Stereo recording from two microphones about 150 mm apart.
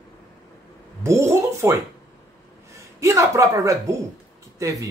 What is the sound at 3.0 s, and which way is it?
Speech, 20° right (ahead or behind).